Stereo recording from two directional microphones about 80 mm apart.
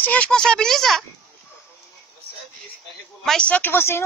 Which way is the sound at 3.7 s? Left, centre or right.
Left.